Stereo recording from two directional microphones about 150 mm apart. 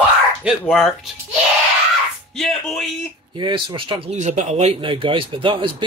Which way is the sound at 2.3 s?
Centre (ahead or behind).